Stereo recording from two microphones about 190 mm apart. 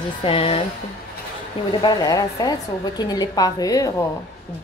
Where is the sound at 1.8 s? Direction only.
20° left (ahead or behind).